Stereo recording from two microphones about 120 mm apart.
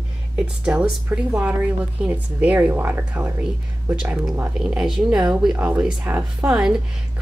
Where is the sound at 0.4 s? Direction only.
5° right (ahead or behind).